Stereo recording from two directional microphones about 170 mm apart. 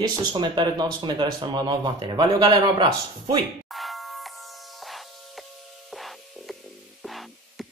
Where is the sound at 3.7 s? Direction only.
Centre (ahead or behind).